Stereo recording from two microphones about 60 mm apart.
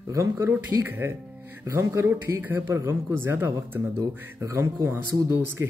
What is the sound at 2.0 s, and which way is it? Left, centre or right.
Speech, right.